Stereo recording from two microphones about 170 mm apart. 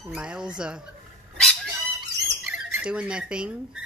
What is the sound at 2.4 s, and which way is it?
Speech, 10° right (ahead or behind).